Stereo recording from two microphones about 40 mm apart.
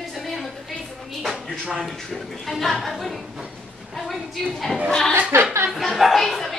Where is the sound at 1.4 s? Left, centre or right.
Centre.